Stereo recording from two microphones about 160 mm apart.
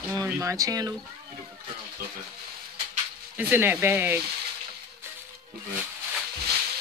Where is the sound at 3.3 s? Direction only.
10° right (ahead or behind).